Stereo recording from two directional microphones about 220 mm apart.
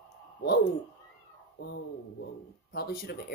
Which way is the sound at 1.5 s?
50° left (ahead or behind).